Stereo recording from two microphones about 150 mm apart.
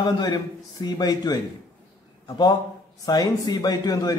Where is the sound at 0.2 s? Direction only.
30° left (ahead or behind).